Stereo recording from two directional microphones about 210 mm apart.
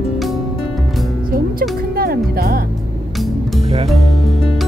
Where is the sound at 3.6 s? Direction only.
25° right (ahead or behind).